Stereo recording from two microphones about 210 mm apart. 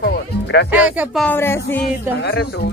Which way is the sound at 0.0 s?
55° left (ahead or behind).